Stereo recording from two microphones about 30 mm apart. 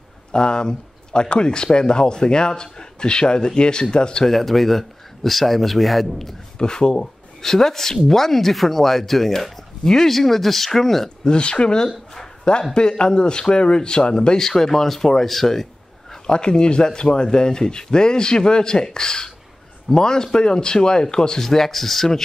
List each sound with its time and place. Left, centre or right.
0.3 s speech: left
4.3 s speech: centre
6.6 s speech: left
7.4 s speech: centre
11.2 s speech: left
14.4 s speech: centre
16.3 s speech: left
21.4 s speech: centre